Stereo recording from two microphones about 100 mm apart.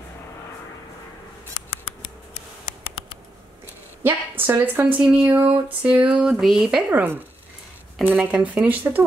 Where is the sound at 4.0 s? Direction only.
20° right (ahead or behind).